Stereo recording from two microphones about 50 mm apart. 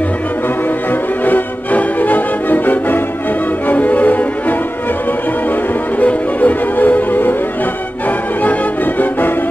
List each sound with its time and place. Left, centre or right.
1.2 s music: left
5.9 s music: left